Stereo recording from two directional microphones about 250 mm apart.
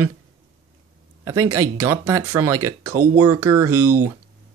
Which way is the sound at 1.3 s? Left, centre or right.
Right.